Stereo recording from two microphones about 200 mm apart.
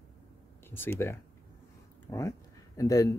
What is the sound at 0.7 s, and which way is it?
Speech, 10° left (ahead or behind).